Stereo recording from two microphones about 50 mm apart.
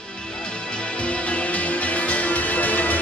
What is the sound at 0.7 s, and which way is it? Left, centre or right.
Music, left.